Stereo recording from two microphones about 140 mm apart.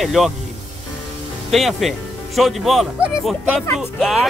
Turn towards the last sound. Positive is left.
turn(degrees=0)  # may be behind; listen again after turning